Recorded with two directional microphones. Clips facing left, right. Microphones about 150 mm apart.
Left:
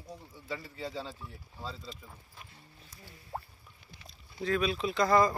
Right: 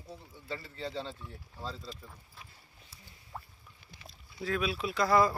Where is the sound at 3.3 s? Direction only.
55° left (ahead or behind).